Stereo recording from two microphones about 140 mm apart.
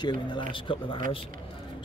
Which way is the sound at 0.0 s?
35° left (ahead or behind).